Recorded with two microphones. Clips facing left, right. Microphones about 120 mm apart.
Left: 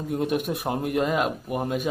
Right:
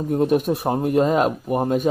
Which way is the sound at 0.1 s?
40° right (ahead or behind).